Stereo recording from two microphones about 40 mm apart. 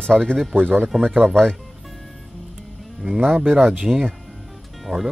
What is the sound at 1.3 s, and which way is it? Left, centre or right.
Speech, centre.